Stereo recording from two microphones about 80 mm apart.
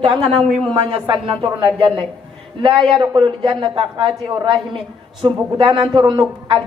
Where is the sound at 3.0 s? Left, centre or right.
Right.